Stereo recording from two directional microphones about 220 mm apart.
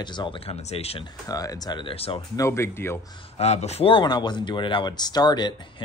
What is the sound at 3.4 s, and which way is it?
Speech, 30° left (ahead or behind).